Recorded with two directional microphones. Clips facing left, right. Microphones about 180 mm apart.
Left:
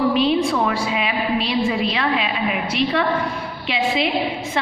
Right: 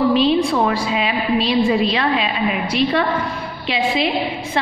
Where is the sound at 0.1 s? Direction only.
30° right (ahead or behind).